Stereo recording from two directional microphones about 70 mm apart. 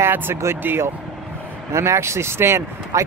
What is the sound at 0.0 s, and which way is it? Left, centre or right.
Speech, right.